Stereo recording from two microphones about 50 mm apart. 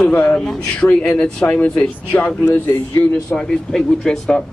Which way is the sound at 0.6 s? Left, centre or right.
Left.